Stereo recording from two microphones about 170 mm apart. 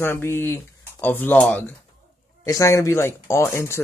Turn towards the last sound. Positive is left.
turn(degrees=15)  # may be behind; listen again after turning